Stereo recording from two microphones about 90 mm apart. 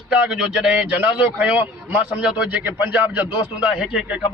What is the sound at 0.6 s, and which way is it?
A man's voice, 15° right (ahead or behind).